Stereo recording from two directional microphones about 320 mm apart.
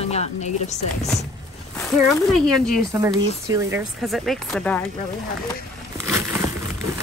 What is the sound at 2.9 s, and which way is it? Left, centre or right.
Speech, centre.